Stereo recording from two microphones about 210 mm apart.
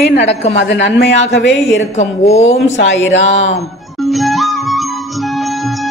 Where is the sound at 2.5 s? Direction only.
60° left (ahead or behind).